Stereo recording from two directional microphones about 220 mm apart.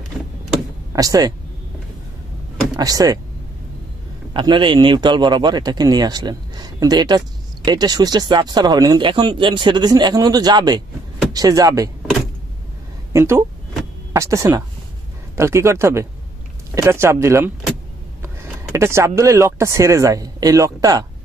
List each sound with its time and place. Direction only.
0.9 s speech: 15° right (ahead or behind)
2.8 s speech: 15° right (ahead or behind)
4.3 s a man's voice: 20° right (ahead or behind)
13.1 s speech: 10° right (ahead or behind)